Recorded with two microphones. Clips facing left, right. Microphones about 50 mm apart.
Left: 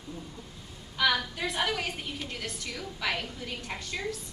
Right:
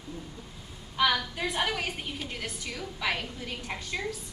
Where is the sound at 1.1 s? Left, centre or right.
Centre.